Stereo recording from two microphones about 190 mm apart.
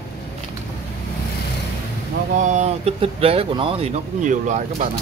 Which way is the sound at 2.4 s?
40° right (ahead or behind).